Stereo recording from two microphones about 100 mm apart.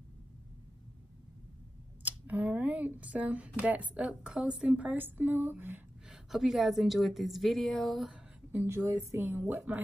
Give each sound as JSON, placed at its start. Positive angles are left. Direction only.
{"t": 2.0, "sound": "speech", "side_deg": -15}
{"t": 6.0, "sound": "a woman's voice", "side_deg": 0}
{"t": 8.6, "sound": "speech", "side_deg": -30}